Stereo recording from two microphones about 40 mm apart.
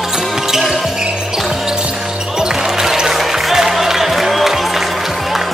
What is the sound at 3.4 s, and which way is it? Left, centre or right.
Music, centre.